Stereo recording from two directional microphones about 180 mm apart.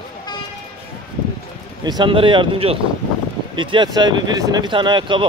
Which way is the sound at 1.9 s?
25° right (ahead or behind).